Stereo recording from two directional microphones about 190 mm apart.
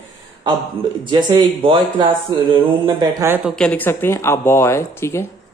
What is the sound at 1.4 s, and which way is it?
Speech, 25° right (ahead or behind).